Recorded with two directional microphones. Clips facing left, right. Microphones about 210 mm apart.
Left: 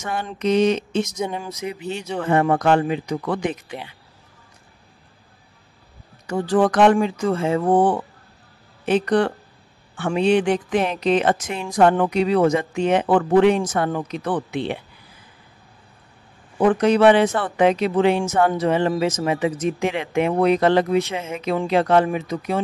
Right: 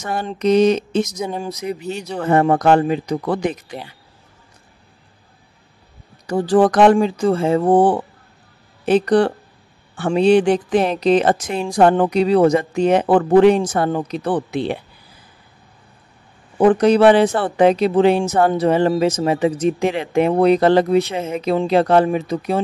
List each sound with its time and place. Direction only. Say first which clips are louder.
0.0 s speech: right 4 dB; 35° right (ahead or behind)
6.2 s speech: right 4 dB; 35° right (ahead or behind)
16.5 s speech: right 4 dB; 35° right (ahead or behind)